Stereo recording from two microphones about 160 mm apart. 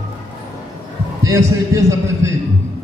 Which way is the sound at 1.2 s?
20° right (ahead or behind).